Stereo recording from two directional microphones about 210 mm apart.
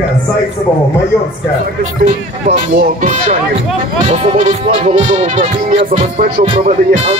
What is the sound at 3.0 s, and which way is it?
Speech, 35° right (ahead or behind).